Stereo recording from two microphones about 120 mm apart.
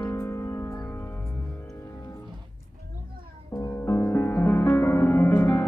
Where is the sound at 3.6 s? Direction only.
20° left (ahead or behind).